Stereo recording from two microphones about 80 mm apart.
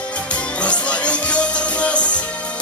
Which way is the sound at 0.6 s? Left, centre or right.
Centre.